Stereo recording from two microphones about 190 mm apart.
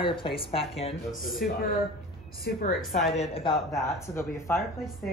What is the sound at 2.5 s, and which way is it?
Speech, 55° left (ahead or behind).